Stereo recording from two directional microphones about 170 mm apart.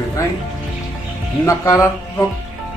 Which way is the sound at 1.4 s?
15° left (ahead or behind).